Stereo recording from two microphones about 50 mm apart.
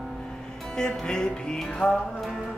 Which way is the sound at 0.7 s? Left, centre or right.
Centre.